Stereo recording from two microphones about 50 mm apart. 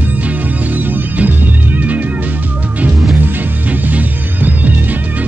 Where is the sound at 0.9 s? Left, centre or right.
Right.